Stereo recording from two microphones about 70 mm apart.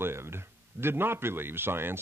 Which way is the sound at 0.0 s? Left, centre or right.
Right.